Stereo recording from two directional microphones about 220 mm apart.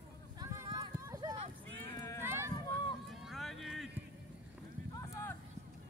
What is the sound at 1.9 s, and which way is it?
Run, 15° left (ahead or behind).